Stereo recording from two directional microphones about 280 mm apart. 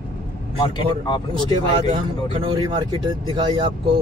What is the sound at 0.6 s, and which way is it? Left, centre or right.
Speech, centre.